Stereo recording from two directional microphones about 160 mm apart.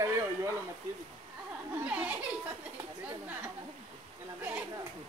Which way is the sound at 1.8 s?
10° right (ahead or behind).